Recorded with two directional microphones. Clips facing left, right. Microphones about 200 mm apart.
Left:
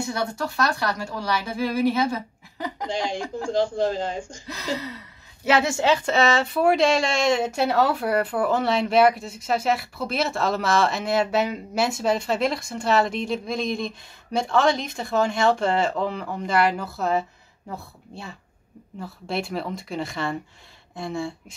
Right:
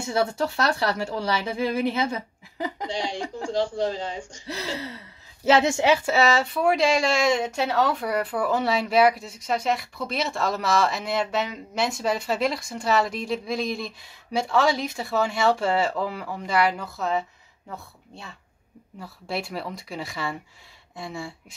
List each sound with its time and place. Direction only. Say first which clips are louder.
0.1 s speech: right 3 dB; 25° right (ahead or behind)
2.9 s speech: left 2 dB; 50° left (ahead or behind)
4.5 s speech: left 1 dB; 30° right (ahead or behind); by 17.2 s 5° left (ahead or behind)
18.9 s speech: left 2 dB; centre (ahead or behind)